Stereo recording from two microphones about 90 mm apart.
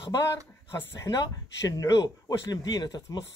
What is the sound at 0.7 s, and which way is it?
Speech, 40° left (ahead or behind).